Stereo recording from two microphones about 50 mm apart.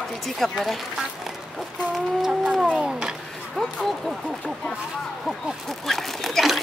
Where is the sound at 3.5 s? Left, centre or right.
Centre.